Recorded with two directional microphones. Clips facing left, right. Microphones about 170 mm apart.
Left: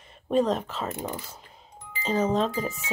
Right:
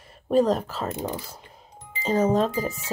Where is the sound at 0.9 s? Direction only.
15° right (ahead or behind).